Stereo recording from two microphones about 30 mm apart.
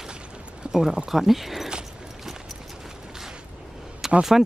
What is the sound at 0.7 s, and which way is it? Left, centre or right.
Speech, centre.